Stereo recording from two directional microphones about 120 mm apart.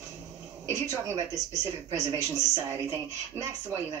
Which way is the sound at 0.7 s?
30° right (ahead or behind).